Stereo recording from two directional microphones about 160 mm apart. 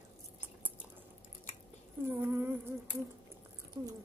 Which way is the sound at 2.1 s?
15° right (ahead or behind).